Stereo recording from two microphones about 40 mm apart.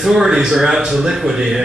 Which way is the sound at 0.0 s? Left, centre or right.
Centre.